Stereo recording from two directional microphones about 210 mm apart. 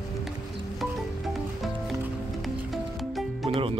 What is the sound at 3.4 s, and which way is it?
Music, 25° right (ahead or behind).